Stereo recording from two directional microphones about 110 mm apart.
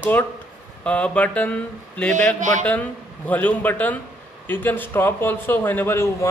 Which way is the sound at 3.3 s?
15° left (ahead or behind).